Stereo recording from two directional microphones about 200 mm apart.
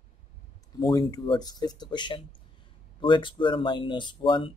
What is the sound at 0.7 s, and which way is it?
Speech, 20° left (ahead or behind).